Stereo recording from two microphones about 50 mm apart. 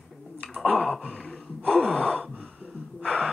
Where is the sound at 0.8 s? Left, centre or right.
Centre.